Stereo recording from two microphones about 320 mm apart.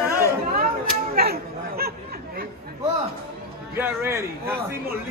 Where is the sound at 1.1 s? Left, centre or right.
Right.